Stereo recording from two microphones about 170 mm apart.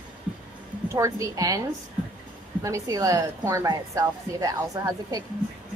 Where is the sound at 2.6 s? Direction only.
20° right (ahead or behind).